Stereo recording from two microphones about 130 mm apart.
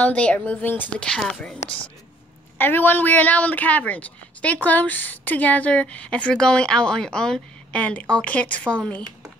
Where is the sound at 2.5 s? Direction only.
15° left (ahead or behind).